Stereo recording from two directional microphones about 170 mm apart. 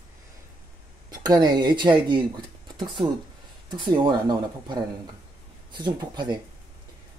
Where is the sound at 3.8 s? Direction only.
25° right (ahead or behind).